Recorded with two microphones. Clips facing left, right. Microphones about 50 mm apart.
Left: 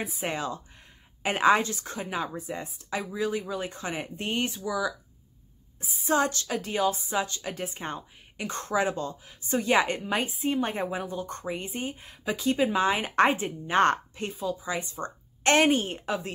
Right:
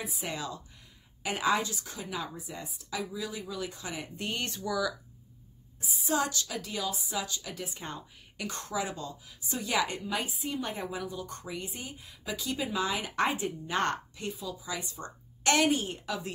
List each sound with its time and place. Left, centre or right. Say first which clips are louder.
0.0 s speech: left 5 dB; left
4.6 s speech: right 1 dB; centre
5.8 s speech: left 5 dB; left